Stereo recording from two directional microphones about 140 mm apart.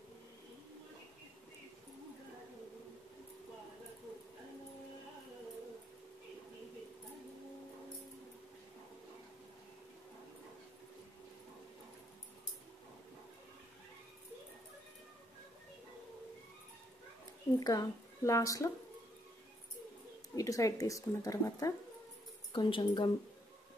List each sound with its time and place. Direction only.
17.6 s speech: 25° left (ahead or behind)
20.3 s speech: 25° left (ahead or behind)
22.5 s speech: 35° left (ahead or behind)